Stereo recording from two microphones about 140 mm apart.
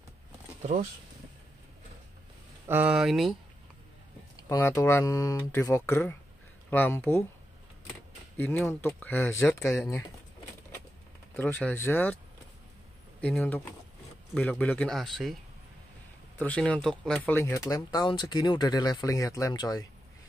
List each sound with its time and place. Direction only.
2.7 s speech: 10° right (ahead or behind)
4.4 s speech: 20° left (ahead or behind)
8.4 s speech: 10° left (ahead or behind)
11.3 s speech: 15° left (ahead or behind)
13.2 s speech: 10° left (ahead or behind)
16.3 s speech: 10° left (ahead or behind)
17.4 s speech: 20° left (ahead or behind)